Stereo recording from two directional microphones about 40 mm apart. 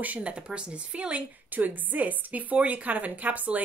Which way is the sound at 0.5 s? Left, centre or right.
Right.